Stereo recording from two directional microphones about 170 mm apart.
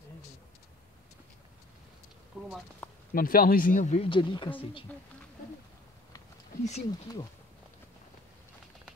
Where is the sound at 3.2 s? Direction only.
60° left (ahead or behind); by 4.1 s 45° left (ahead or behind).